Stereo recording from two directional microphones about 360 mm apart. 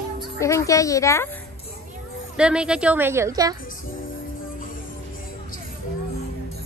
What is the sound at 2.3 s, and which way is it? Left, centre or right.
A woman's voice, centre.